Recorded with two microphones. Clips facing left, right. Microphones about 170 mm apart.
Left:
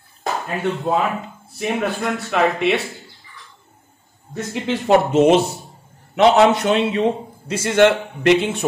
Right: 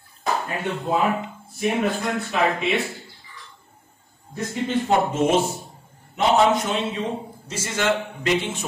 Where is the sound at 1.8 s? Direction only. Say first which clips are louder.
Left 1 dB; 75° left (ahead or behind).